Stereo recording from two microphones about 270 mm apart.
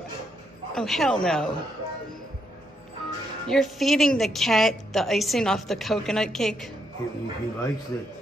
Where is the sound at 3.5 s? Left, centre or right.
Centre.